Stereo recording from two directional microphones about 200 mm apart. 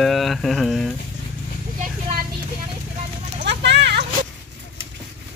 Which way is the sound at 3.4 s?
60° right (ahead or behind).